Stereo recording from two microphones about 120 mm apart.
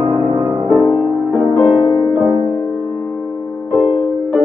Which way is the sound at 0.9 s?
5° left (ahead or behind).